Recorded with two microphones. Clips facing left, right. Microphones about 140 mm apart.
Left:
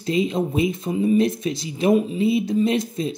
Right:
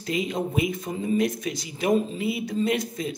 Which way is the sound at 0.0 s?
25° left (ahead or behind).